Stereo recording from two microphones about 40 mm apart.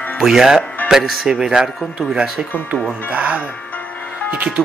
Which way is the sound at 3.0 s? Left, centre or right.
Right.